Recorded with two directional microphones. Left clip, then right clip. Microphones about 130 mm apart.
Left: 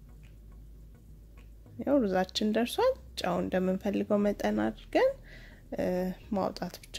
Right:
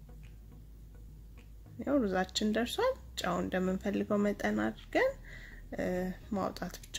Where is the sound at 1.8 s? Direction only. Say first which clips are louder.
Left 4 dB; 35° left (ahead or behind).